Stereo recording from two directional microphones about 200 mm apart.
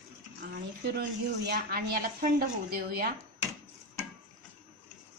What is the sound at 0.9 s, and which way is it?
Speech, 55° right (ahead or behind).